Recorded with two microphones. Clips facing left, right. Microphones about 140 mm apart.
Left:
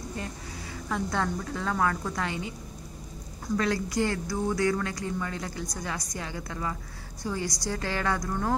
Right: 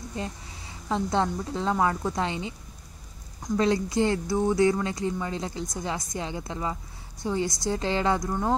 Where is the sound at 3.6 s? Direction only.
25° right (ahead or behind).